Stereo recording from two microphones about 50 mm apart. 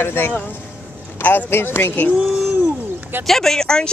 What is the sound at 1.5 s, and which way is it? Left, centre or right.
Speech, left.